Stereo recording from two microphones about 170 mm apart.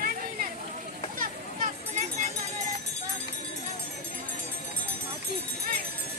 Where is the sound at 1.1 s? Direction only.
50° right (ahead or behind).